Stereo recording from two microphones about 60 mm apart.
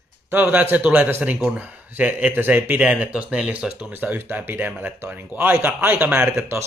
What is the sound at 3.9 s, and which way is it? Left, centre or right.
Speech, right.